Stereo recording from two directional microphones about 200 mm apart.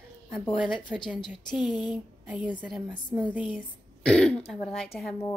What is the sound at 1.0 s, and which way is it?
Speech, 25° left (ahead or behind).